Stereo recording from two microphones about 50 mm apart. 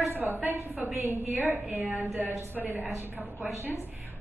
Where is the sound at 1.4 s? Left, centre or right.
Right.